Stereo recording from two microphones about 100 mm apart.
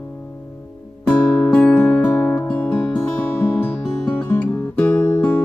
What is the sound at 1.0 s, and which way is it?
Music, 15° left (ahead or behind).